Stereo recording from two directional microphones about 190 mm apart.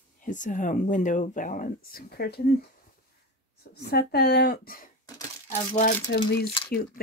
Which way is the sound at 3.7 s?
55° left (ahead or behind).